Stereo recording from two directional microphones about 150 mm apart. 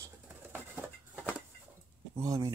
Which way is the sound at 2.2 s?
20° right (ahead or behind).